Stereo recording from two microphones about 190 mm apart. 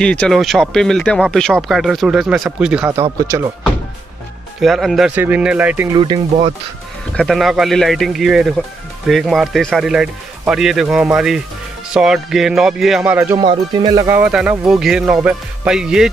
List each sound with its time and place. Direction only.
0.0 s speech: 5° left (ahead or behind)
4.6 s speech: centre (ahead or behind)
5.9 s speech: 25° right (ahead or behind)
7.2 s speech: centre (ahead or behind)
13.4 s speech: 25° right (ahead or behind); by 16.1 s 5° right (ahead or behind)